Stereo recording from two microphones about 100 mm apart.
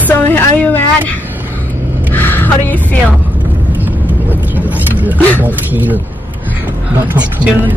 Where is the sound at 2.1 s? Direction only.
20° left (ahead or behind).